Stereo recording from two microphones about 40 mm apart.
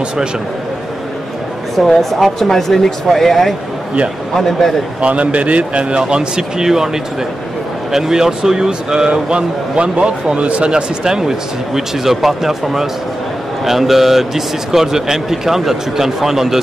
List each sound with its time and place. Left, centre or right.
1.8 s speech: centre
5.0 s a man's voice: right; by 6.9 s centre
7.9 s a man's voice: centre; by 10.8 s right
11.1 s speech: centre